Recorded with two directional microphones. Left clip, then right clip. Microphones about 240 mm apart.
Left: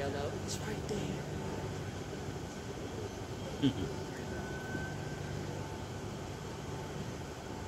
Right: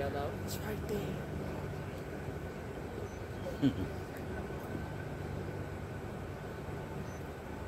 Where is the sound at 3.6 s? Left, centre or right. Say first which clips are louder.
Even; right.